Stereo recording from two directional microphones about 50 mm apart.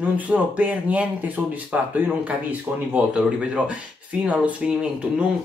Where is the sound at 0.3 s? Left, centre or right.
Right.